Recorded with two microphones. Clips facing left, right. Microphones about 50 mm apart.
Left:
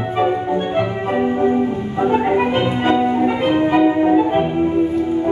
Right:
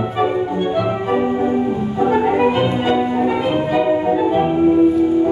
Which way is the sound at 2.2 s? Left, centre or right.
Left.